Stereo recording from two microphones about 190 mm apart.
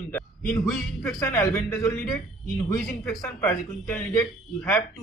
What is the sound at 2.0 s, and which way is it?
Speech, centre (ahead or behind).